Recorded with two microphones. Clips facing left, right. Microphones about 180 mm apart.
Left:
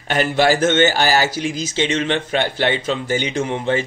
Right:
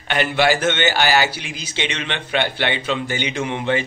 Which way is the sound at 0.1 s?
40° left (ahead or behind).